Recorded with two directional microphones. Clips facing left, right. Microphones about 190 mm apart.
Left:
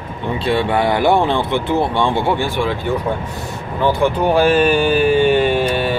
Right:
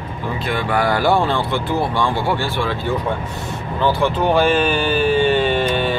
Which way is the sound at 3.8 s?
15° left (ahead or behind).